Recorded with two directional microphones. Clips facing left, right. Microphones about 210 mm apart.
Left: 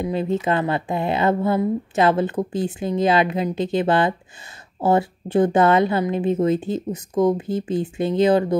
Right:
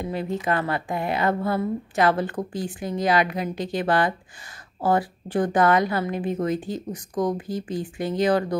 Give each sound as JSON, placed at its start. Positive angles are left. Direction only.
{"t": 0.0, "sound": "speech", "side_deg": 20}